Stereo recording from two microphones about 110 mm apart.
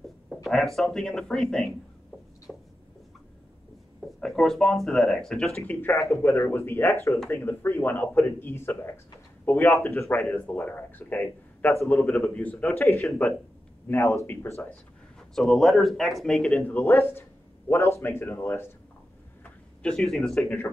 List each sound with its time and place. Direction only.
0.3 s speech: centre (ahead or behind)
2.5 s a sound: 5° left (ahead or behind)
4.0 s speech: 5° left (ahead or behind)
5.6 s speech: 20° left (ahead or behind)
11.9 s speech: 5° left (ahead or behind)
15.1 s speech: 5° left (ahead or behind); by 18.7 s 20° left (ahead or behind)
19.4 s a sound: 10° left (ahead or behind)
20.4 s speech: 20° left (ahead or behind)